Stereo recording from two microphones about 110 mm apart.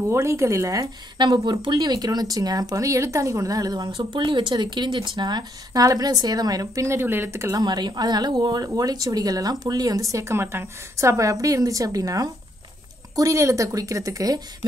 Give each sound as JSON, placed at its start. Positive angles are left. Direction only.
{"t": 0.1, "sound": "a woman's voice", "side_deg": -25}
{"t": 1.1, "sound": "speech", "side_deg": -45}
{"t": 7.5, "sound": "a woman's voice", "side_deg": -40}